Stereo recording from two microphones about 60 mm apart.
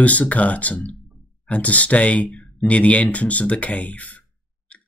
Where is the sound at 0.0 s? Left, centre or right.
Left.